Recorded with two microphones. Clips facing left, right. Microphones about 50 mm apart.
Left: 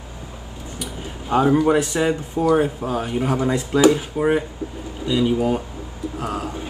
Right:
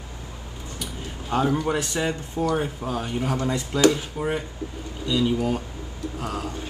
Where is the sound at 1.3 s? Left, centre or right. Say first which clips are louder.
Left 7 dB; centre.